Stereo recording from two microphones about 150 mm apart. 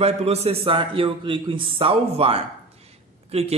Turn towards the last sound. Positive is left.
turn(degrees=-45)  # may be behind; listen again after turning